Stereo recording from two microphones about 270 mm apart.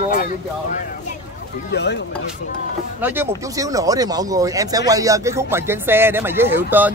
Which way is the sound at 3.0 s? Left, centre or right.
Centre.